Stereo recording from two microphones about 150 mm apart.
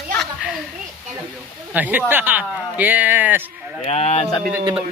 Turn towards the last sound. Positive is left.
turn(degrees=-30)  # may be behind; listen again after turning